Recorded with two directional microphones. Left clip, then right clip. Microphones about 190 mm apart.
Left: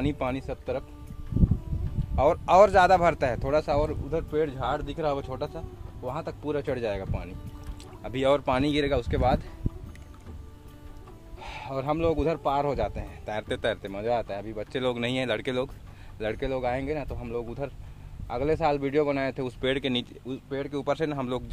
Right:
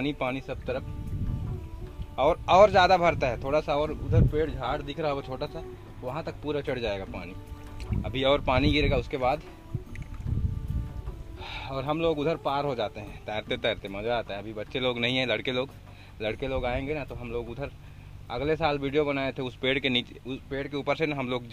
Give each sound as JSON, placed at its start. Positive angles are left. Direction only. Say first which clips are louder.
{"t": 0.0, "sound": "speech", "louder": "even", "side_deg": 15}
{"t": 2.1, "sound": "speech", "louder": "left 1 dB", "side_deg": 15}
{"t": 4.3, "sound": "speech", "louder": "left 4 dB", "side_deg": 10}
{"t": 11.4, "sound": "speech", "louder": "left 1 dB", "side_deg": 20}